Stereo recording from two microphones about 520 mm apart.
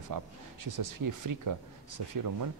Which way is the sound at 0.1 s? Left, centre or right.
Right.